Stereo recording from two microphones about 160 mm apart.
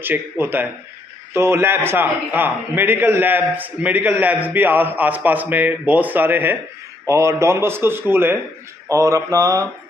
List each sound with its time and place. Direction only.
0.0 s a man's voice: 10° right (ahead or behind)
8.8 s mantra: 20° right (ahead or behind)